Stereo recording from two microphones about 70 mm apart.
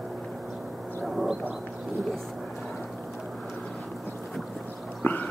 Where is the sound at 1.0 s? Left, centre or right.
Centre.